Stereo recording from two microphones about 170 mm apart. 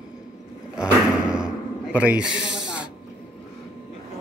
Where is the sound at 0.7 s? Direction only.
5° right (ahead or behind).